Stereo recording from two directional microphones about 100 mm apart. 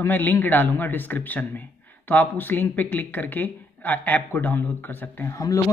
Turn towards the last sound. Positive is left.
turn(degrees=30)  # may be behind; listen again after turning